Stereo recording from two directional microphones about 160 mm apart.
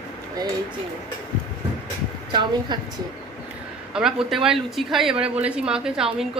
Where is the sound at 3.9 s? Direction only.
5° right (ahead or behind).